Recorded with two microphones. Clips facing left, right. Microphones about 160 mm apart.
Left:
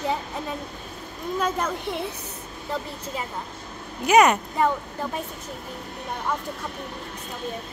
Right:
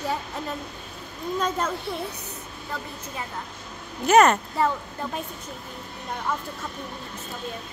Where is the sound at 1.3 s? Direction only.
10° left (ahead or behind).